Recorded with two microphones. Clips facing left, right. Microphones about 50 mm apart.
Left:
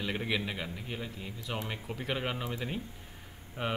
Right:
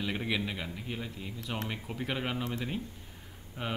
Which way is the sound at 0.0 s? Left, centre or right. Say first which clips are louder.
Even; centre.